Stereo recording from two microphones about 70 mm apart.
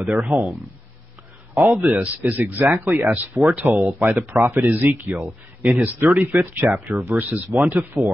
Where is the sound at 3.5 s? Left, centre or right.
Right.